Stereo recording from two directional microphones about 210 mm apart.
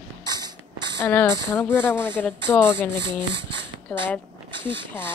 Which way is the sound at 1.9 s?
5° right (ahead or behind).